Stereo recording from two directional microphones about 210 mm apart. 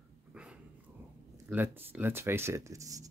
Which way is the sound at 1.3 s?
10° right (ahead or behind).